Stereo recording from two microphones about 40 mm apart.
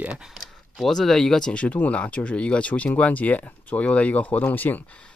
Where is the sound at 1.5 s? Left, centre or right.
Left.